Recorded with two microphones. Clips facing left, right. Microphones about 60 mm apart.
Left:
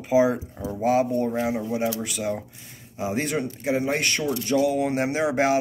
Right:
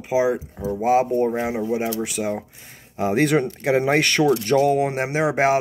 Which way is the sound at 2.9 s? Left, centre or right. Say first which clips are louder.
Right 7 dB; right.